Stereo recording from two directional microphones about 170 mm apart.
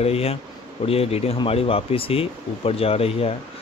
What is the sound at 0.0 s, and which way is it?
Speech, 35° left (ahead or behind).